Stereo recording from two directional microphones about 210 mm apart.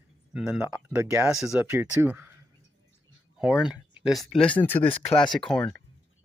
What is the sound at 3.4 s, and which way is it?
Speech, centre (ahead or behind).